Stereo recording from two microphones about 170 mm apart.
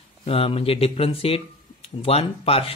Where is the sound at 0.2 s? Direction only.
35° left (ahead or behind).